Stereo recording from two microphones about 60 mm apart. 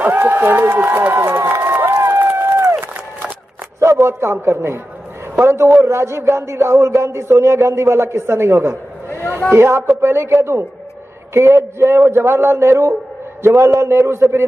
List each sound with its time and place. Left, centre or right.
0.2 s speech: right
0.5 s speech: right
1.3 s run: right
2.0 s a sound: right
3.8 s a man's voice: right